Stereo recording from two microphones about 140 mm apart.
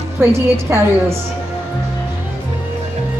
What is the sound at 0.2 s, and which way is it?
Speech, 20° right (ahead or behind).